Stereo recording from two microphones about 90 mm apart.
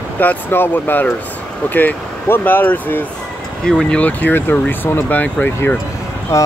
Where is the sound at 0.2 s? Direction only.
20° left (ahead or behind).